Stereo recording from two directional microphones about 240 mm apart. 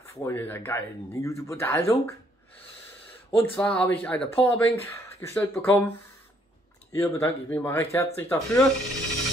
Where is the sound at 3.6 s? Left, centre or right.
Centre.